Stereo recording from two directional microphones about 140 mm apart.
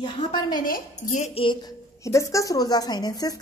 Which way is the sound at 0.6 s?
80° left.